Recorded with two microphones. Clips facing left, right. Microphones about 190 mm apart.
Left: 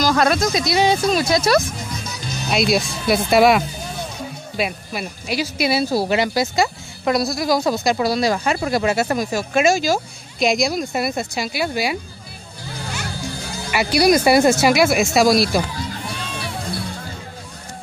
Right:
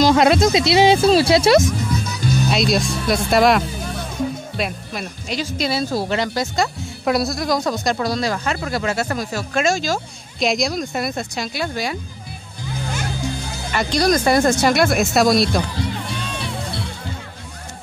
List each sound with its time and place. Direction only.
0.0 s speech: 25° right (ahead or behind)
2.5 s speech: 5° left (ahead or behind)
13.7 s speech: 10° left (ahead or behind)